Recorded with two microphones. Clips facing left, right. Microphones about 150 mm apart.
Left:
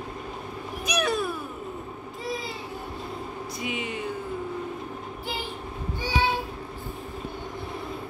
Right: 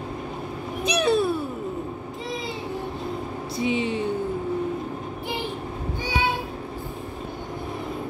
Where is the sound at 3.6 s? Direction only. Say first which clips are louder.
Right 9 dB; 30° right (ahead or behind).